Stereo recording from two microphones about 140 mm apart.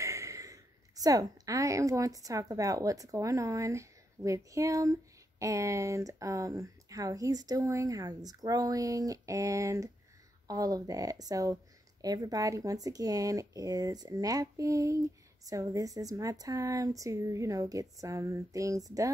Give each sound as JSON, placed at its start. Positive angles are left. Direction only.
{"t": 0.0, "sound": "a woman's voice", "side_deg": -20}